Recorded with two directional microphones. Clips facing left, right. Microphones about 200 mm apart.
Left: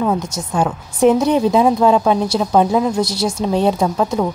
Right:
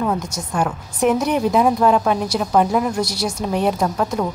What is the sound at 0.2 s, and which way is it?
A woman's voice, 25° left (ahead or behind).